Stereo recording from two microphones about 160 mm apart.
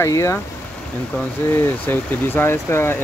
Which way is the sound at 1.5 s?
15° left (ahead or behind).